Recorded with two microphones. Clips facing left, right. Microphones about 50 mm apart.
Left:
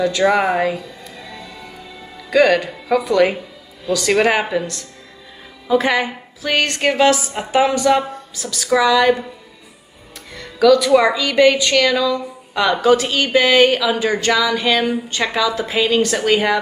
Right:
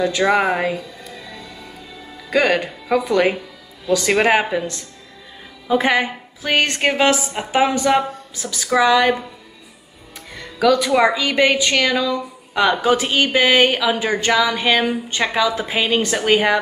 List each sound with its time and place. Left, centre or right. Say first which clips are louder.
0.3 s speech: left 1 dB; centre
2.3 s a woman's voice: left 3 dB; right
10.3 s a woman's voice: left 4 dB; right